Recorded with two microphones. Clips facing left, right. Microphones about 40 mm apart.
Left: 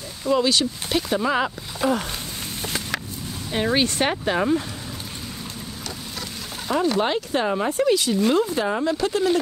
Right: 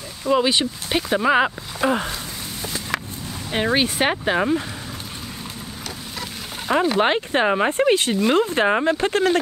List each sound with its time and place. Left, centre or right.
0.3 s speech: right
3.5 s speech: centre
7.0 s speech: right